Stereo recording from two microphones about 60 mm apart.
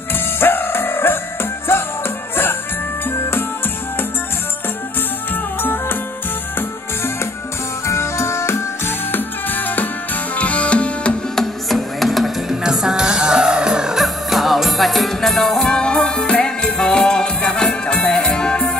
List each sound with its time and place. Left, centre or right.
0.4 s music: left
3.1 s music: left
5.3 s music: left
7.8 s music: left
11.3 s music: centre
12.6 s music: centre